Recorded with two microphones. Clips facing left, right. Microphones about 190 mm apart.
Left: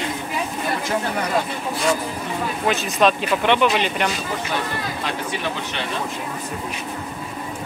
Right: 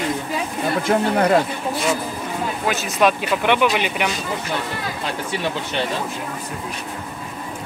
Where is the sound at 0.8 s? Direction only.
55° right (ahead or behind).